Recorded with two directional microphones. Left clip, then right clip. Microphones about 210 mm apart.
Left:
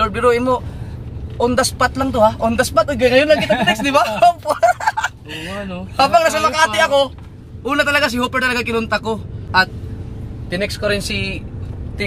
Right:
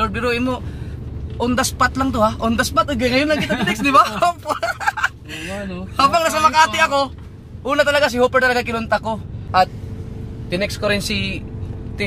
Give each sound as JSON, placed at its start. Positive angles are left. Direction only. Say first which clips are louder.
{"t": 0.0, "sound": "a man's voice", "louder": "left 5 dB", "side_deg": -10}